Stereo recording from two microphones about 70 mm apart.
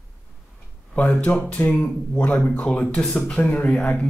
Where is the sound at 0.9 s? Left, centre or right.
Centre.